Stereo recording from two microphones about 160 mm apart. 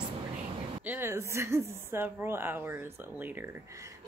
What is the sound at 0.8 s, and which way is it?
A woman's voice, 15° right (ahead or behind).